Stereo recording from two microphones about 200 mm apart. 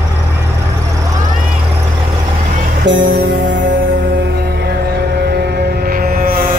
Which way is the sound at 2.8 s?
60° right (ahead or behind).